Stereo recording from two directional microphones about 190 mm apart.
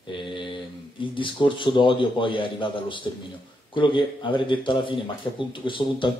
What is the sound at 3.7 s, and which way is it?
Speech, 25° left (ahead or behind).